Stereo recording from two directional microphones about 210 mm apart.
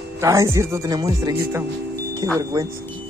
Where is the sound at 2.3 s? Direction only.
15° right (ahead or behind).